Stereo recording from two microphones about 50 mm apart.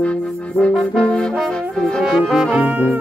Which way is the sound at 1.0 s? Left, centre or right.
Centre.